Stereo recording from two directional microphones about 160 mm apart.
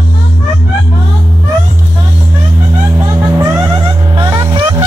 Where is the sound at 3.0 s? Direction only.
20° right (ahead or behind).